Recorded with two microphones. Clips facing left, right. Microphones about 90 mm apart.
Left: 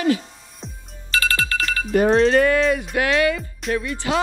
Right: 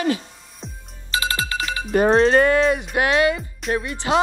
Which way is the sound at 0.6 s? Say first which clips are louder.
Even; centre (ahead or behind).